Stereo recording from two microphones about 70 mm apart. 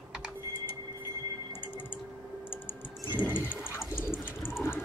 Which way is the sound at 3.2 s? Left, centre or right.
Left.